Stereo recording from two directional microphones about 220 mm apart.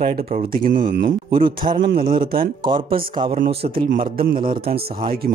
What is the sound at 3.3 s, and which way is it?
Speech, 40° right (ahead or behind).